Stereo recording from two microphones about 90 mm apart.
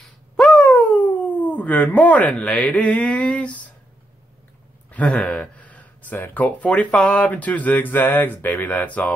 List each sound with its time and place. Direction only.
0.4 s speech: 15° left (ahead or behind)
4.9 s speech: 15° left (ahead or behind)